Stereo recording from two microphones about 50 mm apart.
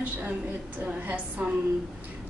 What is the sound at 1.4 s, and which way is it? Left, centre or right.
Speech, right.